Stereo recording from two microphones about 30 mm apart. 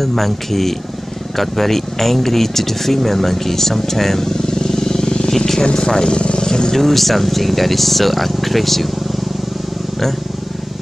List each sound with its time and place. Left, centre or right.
0.0 s speech: centre
4.5 s vehicle: centre
5.6 s speech: left
6.0 s vehicle: left
6.7 s speech: centre